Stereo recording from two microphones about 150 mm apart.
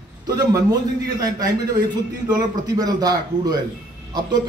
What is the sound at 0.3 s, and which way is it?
A man's voice, 25° right (ahead or behind).